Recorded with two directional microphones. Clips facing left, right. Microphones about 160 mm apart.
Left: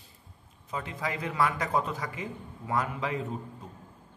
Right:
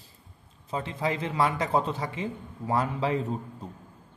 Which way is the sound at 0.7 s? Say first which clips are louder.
Right 5 dB; 30° right (ahead or behind).